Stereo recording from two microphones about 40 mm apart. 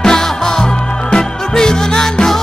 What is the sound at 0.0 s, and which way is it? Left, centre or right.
Music, centre.